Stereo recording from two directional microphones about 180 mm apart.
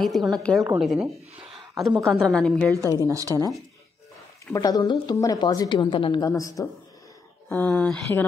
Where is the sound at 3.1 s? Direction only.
20° right (ahead or behind).